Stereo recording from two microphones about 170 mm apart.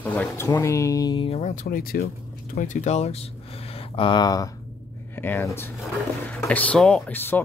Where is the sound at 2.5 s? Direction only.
50° left (ahead or behind); by 4.5 s 25° left (ahead or behind).